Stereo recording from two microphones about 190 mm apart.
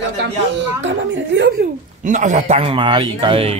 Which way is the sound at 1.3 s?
75° right (ahead or behind).